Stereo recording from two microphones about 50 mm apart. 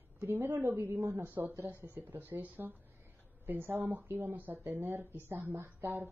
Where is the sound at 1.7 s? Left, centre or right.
Left.